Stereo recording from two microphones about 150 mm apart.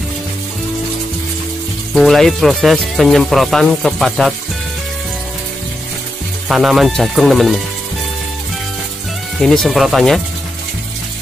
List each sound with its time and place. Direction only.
2.0 s speech: centre (ahead or behind)
6.5 s speech: centre (ahead or behind)
9.4 s speech: centre (ahead or behind)